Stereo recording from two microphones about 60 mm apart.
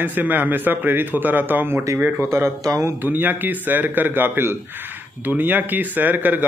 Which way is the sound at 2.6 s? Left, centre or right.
Right.